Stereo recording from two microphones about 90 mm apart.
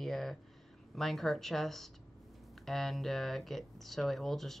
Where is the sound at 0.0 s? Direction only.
Centre (ahead or behind).